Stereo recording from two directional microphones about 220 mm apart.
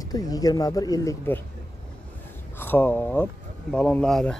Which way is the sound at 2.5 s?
10° left (ahead or behind).